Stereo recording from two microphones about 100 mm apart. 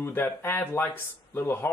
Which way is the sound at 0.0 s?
20° left (ahead or behind).